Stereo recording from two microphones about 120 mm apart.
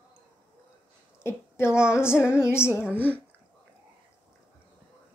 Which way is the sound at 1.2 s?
20° left (ahead or behind).